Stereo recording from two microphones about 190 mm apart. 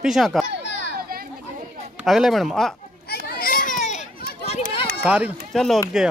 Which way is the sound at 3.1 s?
50° left (ahead or behind).